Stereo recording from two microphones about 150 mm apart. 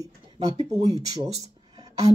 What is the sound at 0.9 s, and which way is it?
Speech, 40° right (ahead or behind).